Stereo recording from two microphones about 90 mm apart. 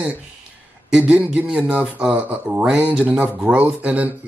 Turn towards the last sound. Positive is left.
turn(degrees=-15)  # may be behind; listen again after turning